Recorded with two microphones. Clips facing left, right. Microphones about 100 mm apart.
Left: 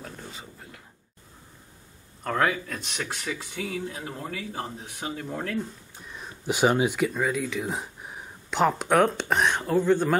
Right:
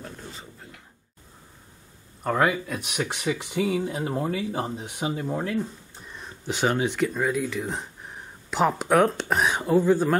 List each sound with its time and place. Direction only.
0.0 s a sound: centre (ahead or behind)
2.2 s speech: 10° right (ahead or behind)
5.9 s speech: centre (ahead or behind)